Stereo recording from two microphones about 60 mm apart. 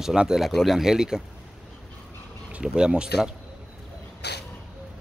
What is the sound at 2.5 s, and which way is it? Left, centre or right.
Speech, centre.